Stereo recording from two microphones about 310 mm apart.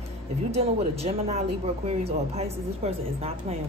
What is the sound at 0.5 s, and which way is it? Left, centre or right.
A woman's voice, centre.